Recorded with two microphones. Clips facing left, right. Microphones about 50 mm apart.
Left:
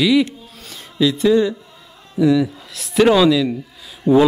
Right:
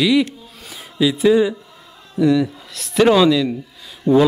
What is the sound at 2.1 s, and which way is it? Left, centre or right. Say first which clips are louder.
Speech: left 1 dB; centre.